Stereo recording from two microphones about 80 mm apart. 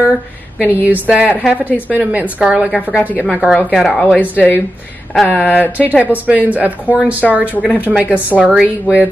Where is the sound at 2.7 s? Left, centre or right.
Centre.